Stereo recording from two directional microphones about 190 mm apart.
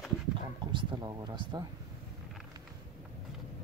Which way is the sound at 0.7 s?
20° right (ahead or behind).